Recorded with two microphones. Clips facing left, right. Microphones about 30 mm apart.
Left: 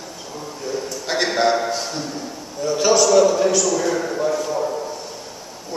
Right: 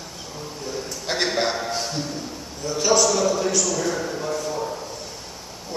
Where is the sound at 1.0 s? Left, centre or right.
Centre.